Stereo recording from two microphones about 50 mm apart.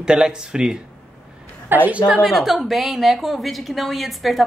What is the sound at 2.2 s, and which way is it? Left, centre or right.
A woman's voice, centre.